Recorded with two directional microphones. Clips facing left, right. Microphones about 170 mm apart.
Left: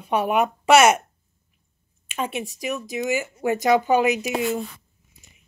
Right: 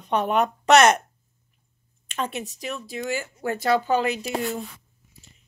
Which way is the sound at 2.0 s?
10° left (ahead or behind).